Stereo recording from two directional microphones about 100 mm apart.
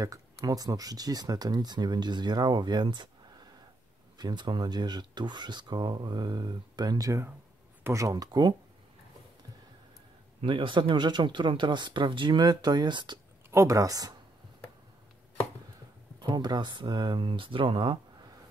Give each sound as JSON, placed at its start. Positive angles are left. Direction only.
{"t": 0.0, "sound": "speech", "side_deg": -35}
{"t": 4.2, "sound": "speech", "side_deg": -45}
{"t": 10.4, "sound": "speech", "side_deg": -55}
{"t": 13.5, "sound": "speech", "side_deg": -30}
{"t": 16.2, "sound": "speech", "side_deg": -45}